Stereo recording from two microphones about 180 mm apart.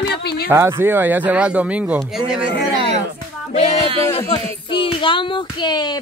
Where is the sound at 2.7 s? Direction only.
35° right (ahead or behind).